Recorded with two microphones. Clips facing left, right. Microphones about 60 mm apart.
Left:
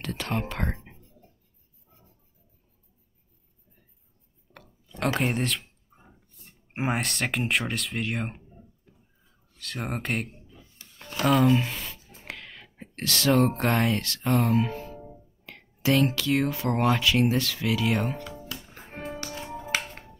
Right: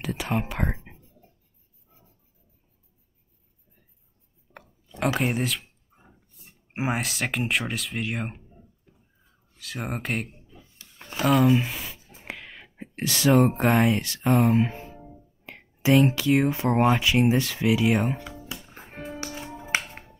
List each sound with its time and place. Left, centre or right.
0.0 s speech: centre
4.6 s a sound: right
4.9 s speech: centre
6.7 s speech: centre
9.6 s speech: centre
11.0 s a sound: centre
13.3 s speech: centre
18.5 s music: centre
18.9 s music: centre
19.1 s music: centre